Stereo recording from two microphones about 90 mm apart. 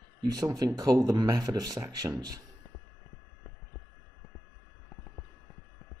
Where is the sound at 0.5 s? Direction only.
45° right (ahead or behind).